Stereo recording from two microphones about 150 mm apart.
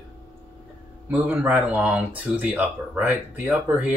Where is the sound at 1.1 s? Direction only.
10° right (ahead or behind).